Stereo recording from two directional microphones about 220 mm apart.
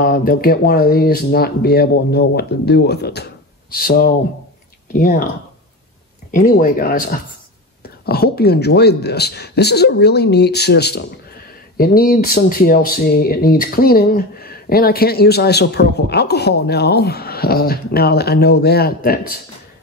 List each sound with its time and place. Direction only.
0.0 s speech: 40° left (ahead or behind)
6.3 s speech: 40° left (ahead or behind)